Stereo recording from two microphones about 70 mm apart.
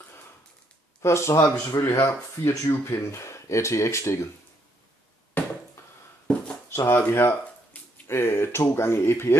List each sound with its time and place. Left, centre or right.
1.0 s speech: left
1.7 s speech: left
5.4 s a sound: left
6.9 s speech: left
7.7 s a sound: left
8.1 s speech: left